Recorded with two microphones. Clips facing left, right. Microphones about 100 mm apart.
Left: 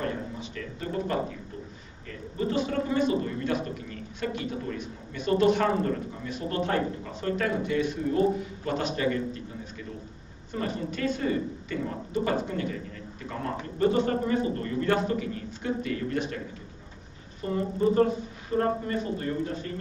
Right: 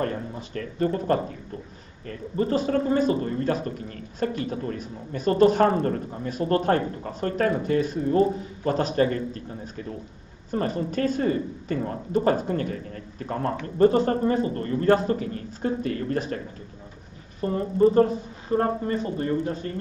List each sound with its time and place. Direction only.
0.0 s speech: 45° right (ahead or behind)
2.3 s a man's voice: 40° right (ahead or behind)
17.4 s a man's voice: 35° right (ahead or behind)